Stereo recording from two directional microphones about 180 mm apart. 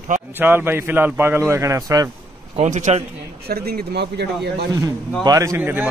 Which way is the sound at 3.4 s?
60° right (ahead or behind).